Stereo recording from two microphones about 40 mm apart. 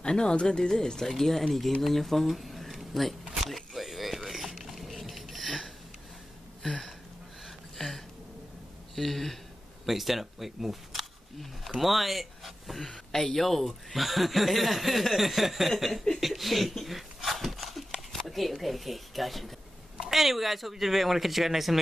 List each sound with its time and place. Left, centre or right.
0.0 s speech: left; by 1.4 s centre
1.8 s a sound: centre
8.9 s speech: centre